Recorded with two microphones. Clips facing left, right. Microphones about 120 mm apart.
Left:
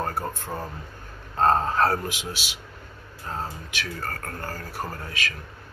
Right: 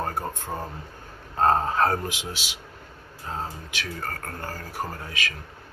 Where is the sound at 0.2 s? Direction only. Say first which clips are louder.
Even; 20° right (ahead or behind).